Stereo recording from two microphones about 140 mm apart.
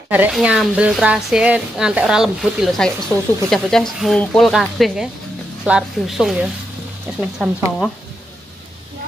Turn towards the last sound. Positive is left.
turn(degrees=-5)  # may be behind; listen again after turning